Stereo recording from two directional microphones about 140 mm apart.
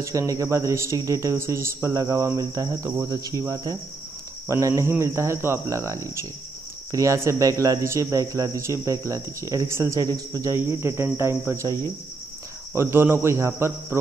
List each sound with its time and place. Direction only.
0.0 s speech: 20° right (ahead or behind)